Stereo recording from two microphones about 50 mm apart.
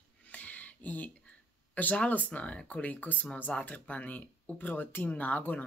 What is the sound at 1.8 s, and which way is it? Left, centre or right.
Speech, left.